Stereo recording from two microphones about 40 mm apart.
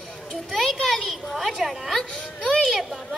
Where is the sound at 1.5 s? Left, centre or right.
Centre.